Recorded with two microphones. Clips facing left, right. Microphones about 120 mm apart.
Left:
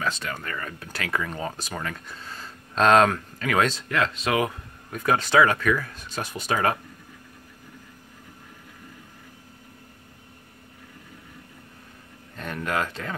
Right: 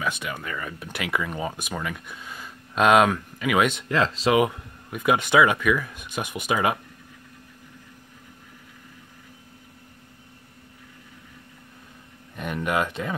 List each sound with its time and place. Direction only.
0.2 s speech: 10° right (ahead or behind)
3.9 s speech: 30° right (ahead or behind); by 6.8 s 10° right (ahead or behind)
12.4 s speech: 15° right (ahead or behind)